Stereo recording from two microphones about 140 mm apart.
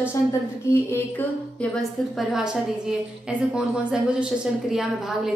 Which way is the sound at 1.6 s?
Centre (ahead or behind).